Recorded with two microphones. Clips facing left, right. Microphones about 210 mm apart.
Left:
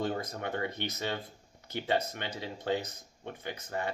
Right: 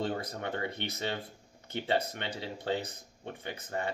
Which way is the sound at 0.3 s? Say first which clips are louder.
Left 1 dB; 30° right (ahead or behind).